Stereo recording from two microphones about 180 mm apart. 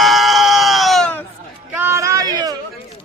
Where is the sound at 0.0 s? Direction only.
Centre (ahead or behind).